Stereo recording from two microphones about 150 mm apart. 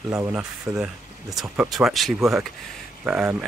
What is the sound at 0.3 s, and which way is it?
Speech, 5° right (ahead or behind).